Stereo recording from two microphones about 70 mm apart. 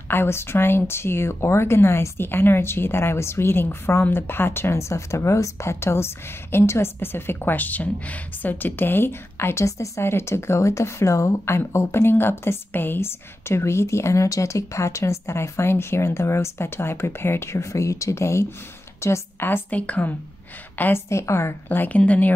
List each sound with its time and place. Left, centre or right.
0.1 s a woman's voice: left
21.1 s speech: left
21.6 s a woman's voice: left